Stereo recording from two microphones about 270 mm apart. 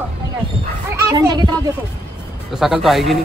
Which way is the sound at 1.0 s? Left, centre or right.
Centre.